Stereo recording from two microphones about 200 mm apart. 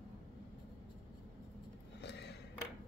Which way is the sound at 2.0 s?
60° left (ahead or behind).